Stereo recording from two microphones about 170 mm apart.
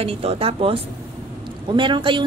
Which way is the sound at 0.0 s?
35° right (ahead or behind).